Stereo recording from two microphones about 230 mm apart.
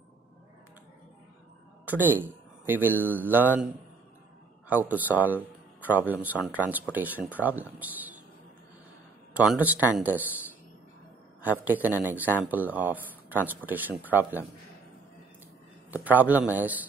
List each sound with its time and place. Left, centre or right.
1.9 s speech: centre
4.6 s speech: centre
9.3 s speech: centre
9.8 s speech: centre
11.6 s speech: centre
15.9 s speech: centre